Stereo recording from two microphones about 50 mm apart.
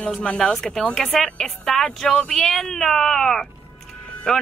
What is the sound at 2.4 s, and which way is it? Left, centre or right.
Speech, centre.